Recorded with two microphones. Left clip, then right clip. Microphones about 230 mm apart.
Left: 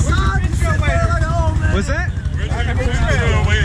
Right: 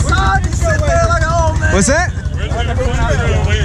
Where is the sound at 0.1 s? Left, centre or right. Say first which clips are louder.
Right 8 dB; right.